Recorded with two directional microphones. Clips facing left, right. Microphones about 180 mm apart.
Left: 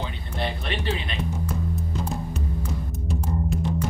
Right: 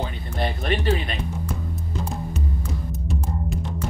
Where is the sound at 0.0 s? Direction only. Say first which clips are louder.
Right 2 dB; 45° right (ahead or behind).